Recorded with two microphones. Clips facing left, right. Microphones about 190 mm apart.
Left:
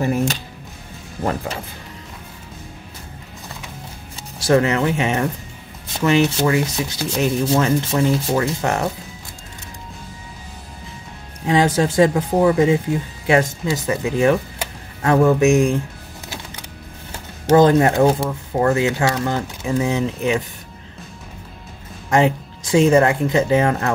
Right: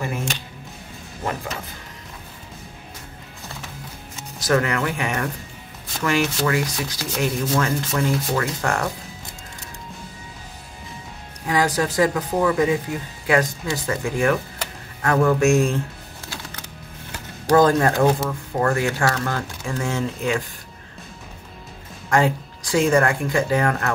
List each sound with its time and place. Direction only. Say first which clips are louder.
4.4 s speech: left 5 dB; 25° left (ahead or behind)
11.4 s speech: left 4 dB; 25° left (ahead or behind)
17.5 s speech: left 3 dB; 20° left (ahead or behind)
22.1 s speech: left 3 dB; 20° left (ahead or behind)